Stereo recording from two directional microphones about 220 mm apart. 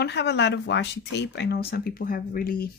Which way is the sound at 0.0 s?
50° left (ahead or behind).